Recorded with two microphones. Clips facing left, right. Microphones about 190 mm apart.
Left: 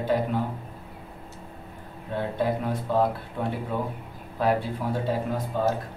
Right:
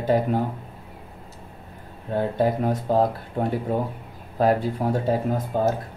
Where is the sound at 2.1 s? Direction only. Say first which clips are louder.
Right 4 dB; 45° right (ahead or behind).